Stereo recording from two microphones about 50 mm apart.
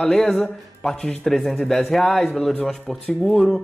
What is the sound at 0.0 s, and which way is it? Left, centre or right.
Speech, centre.